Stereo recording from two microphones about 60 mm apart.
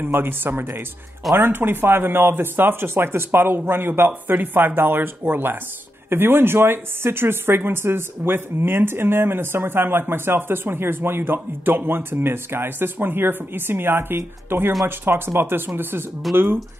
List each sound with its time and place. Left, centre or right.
0.0 s speech: right